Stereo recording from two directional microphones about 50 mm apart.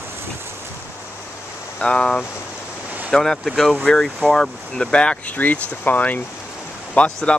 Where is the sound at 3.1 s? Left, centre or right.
Centre.